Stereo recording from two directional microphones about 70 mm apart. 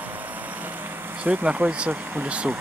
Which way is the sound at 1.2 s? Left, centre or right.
Centre.